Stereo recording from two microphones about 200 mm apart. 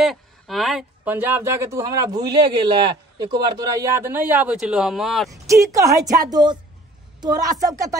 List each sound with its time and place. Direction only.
0.0 s speech: centre (ahead or behind)
5.3 s a woman's voice: 15° right (ahead or behind)